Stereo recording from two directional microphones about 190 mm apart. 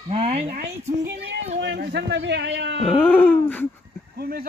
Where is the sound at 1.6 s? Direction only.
60° right (ahead or behind).